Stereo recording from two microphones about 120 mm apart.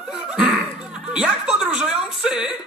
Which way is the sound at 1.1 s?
10° right (ahead or behind).